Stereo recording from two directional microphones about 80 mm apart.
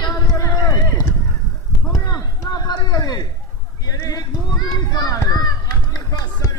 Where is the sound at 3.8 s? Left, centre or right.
Left.